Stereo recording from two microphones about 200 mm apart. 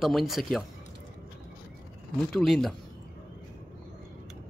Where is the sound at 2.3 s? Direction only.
5° left (ahead or behind).